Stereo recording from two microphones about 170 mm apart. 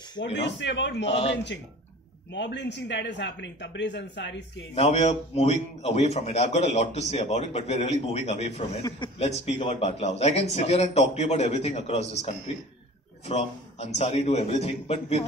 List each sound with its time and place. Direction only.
0.2 s speech: 90° left
1.0 s a man's voice: 35° left (ahead or behind)
1.3 s speech: 90° left
4.7 s a man's voice: 40° left (ahead or behind)